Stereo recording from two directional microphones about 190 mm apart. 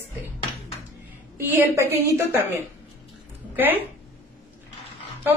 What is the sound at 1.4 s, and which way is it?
Speech, 10° right (ahead or behind).